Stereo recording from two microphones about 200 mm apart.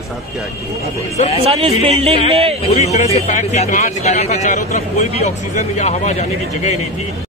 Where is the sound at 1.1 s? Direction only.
30° left (ahead or behind).